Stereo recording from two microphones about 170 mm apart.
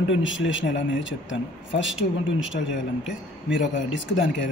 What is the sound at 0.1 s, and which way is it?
Speech, 90° left.